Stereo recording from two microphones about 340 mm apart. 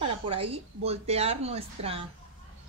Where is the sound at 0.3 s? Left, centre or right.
Centre.